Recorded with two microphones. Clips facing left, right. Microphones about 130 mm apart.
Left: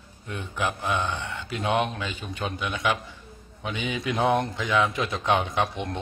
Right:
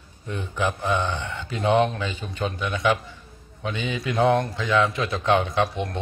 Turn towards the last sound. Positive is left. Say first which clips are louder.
# right 3 dB
turn(degrees=15)  # may be behind; listen again after turning